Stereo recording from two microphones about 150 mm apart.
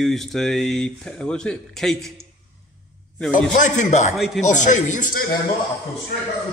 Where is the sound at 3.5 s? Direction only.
55° left (ahead or behind).